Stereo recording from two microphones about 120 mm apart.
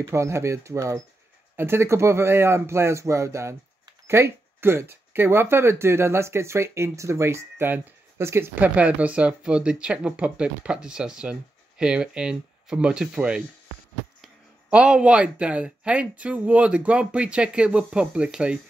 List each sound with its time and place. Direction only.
0.0 s speech: 25° right (ahead or behind)